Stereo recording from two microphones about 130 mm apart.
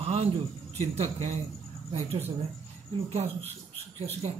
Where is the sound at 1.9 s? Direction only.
55° right (ahead or behind).